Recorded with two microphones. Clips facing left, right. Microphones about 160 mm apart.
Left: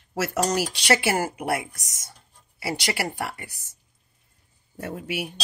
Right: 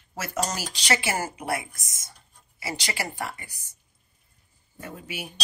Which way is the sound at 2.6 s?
65° left (ahead or behind).